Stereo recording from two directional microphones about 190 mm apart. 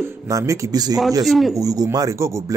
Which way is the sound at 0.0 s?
15° right (ahead or behind).